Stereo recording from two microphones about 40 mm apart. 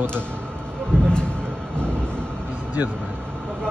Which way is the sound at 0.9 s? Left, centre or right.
Left.